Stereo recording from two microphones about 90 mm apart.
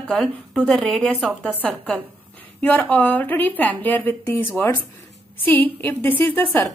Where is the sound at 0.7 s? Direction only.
5° left (ahead or behind).